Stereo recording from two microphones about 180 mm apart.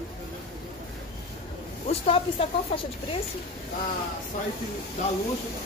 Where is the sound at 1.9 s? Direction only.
30° left (ahead or behind).